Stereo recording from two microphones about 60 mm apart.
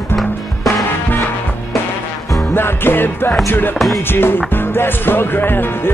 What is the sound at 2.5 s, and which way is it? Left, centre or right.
Music, left.